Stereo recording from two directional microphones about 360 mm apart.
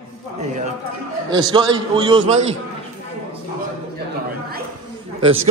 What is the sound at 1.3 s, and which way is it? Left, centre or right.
Speech, centre.